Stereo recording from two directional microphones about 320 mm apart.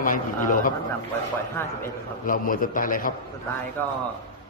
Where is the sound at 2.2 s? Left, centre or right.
Left.